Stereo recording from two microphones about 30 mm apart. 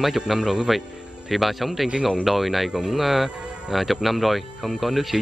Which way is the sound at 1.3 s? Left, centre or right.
Centre.